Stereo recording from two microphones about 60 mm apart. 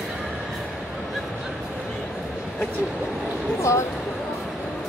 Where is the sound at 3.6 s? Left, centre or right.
Left.